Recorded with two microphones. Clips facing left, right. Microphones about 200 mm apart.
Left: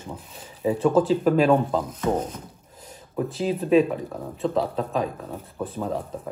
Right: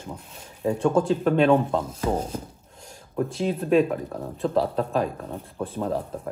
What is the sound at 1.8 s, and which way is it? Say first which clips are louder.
Speech: left 1 dB; 30° right (ahead or behind).